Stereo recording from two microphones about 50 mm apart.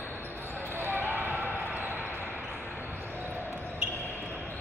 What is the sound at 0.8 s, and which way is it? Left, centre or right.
Basketball bounce, right.